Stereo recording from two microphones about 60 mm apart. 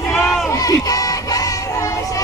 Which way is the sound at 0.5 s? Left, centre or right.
Left.